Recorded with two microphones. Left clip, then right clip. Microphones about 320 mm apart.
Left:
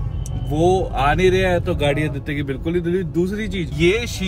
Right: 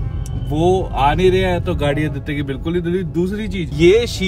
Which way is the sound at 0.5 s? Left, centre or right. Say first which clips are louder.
Right 1 dB; left.